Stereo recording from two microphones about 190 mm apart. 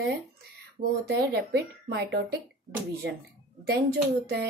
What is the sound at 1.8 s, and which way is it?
A woman's voice, 60° right (ahead or behind).